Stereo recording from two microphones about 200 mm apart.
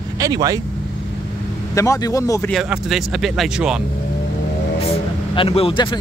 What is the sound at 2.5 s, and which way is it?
Speech, centre (ahead or behind).